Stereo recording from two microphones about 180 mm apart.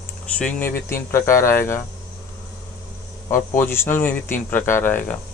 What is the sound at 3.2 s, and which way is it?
Speech, 15° left (ahead or behind).